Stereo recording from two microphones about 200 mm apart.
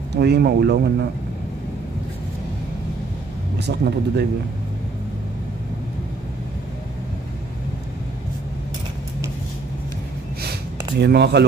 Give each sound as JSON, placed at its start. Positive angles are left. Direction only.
{"t": 0.2, "sound": "speech", "side_deg": -55}
{"t": 3.5, "sound": "speech", "side_deg": -55}
{"t": 11.0, "sound": "speech", "side_deg": -55}